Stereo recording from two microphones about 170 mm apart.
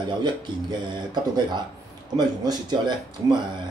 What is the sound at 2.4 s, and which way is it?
Speech, 25° right (ahead or behind).